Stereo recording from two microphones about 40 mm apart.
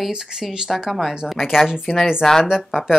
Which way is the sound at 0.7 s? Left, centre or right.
Centre.